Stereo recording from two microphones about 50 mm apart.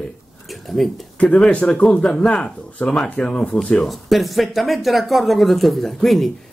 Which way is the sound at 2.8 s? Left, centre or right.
Left.